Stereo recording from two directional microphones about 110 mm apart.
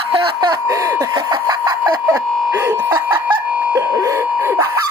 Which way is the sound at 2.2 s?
Centre (ahead or behind).